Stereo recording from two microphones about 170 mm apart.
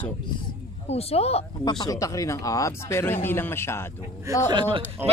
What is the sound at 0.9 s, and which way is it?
Speech, 35° left (ahead or behind).